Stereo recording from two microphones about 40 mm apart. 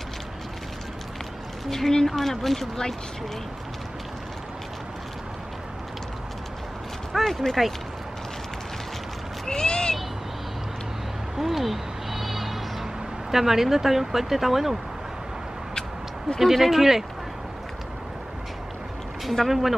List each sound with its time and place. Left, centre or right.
1.7 s speech: centre
7.2 s speech: centre
9.5 s a sound: centre
11.3 s a sound: centre
13.3 s speech: centre
16.3 s speech: centre
19.2 s speech: centre